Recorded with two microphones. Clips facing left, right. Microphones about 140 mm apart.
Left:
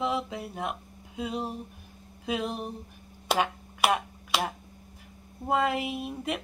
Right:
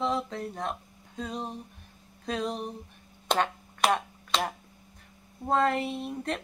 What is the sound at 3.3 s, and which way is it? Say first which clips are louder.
Finger snapping: even; 5° left (ahead or behind).